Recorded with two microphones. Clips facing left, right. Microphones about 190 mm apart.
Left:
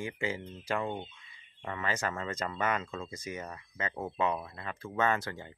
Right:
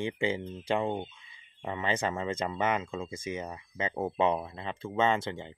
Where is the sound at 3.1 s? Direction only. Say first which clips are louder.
Right 4 dB; 25° right (ahead or behind).